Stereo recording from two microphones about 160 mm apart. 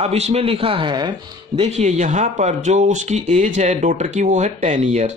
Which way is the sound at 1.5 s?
45° right (ahead or behind).